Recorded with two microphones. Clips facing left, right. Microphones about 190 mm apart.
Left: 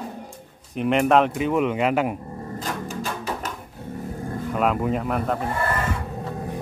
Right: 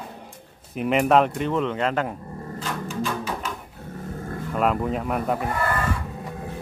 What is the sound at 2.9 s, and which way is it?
Music, 40° left (ahead or behind).